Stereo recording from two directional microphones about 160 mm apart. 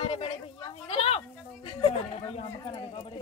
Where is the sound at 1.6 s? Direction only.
30° left (ahead or behind).